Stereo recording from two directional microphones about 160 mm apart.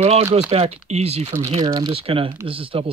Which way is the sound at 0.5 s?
40° right (ahead or behind).